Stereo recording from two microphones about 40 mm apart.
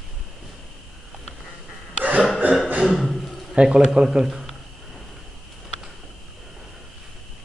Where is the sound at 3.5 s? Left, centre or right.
Centre.